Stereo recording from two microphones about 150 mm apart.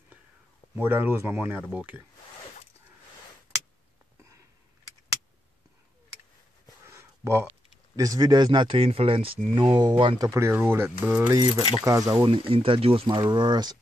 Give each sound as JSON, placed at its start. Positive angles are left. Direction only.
{"t": 0.7, "sound": "speech", "side_deg": -15}
{"t": 6.9, "sound": "speech", "side_deg": -20}
{"t": 10.2, "sound": "speech", "side_deg": -20}
{"t": 12.3, "sound": "speech", "side_deg": -35}